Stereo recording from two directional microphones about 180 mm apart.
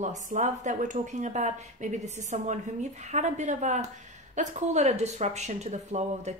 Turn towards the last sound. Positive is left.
turn(degrees=-40)  # may be behind; listen again after turning